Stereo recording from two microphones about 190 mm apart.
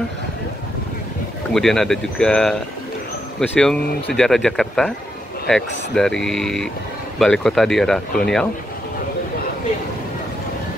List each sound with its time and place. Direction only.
1.5 s speech: centre (ahead or behind)